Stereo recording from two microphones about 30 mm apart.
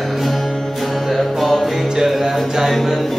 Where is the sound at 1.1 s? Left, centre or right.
Centre.